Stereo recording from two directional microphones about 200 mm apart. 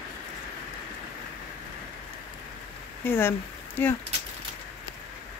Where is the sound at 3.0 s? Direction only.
10° left (ahead or behind).